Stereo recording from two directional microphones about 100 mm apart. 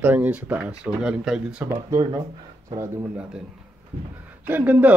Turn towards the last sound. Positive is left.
turn(degrees=-15)  # may be behind; listen again after turning